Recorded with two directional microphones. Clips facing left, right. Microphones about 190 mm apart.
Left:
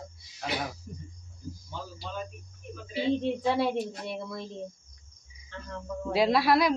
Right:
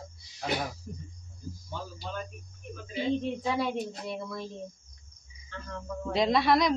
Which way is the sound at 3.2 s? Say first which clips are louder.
Left 3 dB; 30° left (ahead or behind).